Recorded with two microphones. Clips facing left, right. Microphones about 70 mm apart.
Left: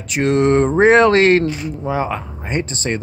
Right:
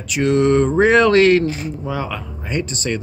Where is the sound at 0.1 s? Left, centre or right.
Left.